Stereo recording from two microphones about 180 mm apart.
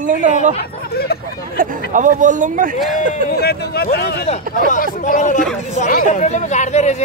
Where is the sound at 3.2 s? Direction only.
60° left (ahead or behind).